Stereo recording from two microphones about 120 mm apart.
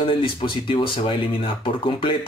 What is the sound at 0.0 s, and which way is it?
Speech, 45° left (ahead or behind).